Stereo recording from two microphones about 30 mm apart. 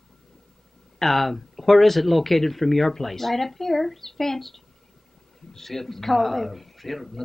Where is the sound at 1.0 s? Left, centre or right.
Centre.